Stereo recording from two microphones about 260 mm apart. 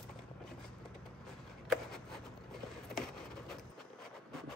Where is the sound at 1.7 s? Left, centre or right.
Centre.